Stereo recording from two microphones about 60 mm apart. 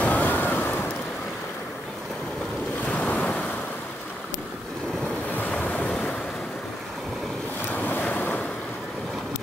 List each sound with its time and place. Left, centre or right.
0.0 s vehicle: left
2.8 s waves: left
5.6 s waves: left
7.7 s waves: left